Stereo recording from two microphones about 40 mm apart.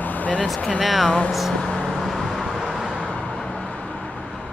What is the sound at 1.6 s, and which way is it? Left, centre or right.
Vehicle, centre.